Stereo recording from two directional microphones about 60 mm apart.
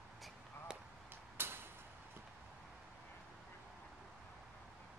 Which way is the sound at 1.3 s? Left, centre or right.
Right.